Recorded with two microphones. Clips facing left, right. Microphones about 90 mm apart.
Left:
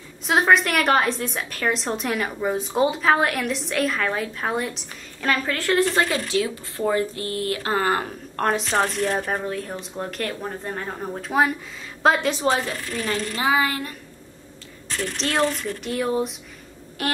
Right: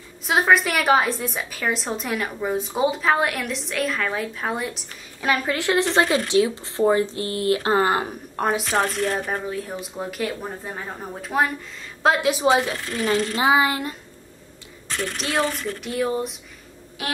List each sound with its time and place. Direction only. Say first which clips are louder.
0.3 s a woman's voice: even; centre (ahead or behind)
5.2 s speech: right 1 dB; 15° right (ahead or behind)
8.4 s a woman's voice: even; 5° right (ahead or behind); by 13.9 s 20° right (ahead or behind)
15.1 s a woman's voice: left 2 dB; 5° right (ahead or behind)